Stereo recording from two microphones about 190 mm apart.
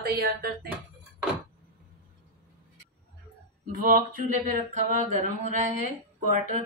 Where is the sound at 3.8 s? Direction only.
50° right (ahead or behind).